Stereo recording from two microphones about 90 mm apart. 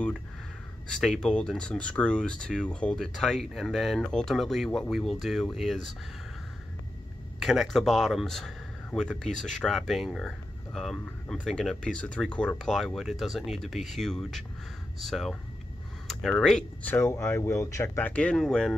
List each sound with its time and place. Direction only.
0.8 s speech: 10° left (ahead or behind)
7.3 s speech: centre (ahead or behind)
16.8 s speech: 25° left (ahead or behind)
18.4 s speech: 5° left (ahead or behind)